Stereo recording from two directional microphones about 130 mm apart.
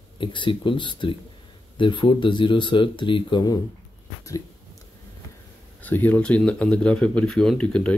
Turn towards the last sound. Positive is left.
turn(degrees=10)  # may be behind; listen again after turning